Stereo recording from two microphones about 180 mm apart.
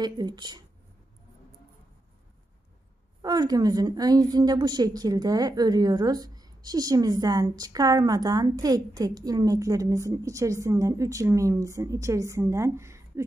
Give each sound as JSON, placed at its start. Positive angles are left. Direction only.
{"t": 0.0, "sound": "a woman's voice", "side_deg": -25}
{"t": 3.2, "sound": "a woman's voice", "side_deg": -20}